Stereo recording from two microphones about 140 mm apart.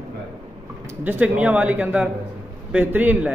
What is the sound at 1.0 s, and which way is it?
A man's voice, 10° right (ahead or behind).